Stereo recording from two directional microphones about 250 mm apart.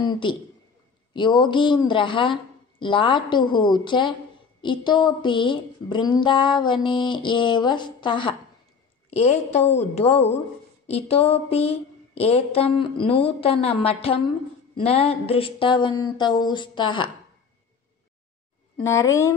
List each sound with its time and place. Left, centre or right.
0.0 s a man's voice: centre
18.8 s speech: centre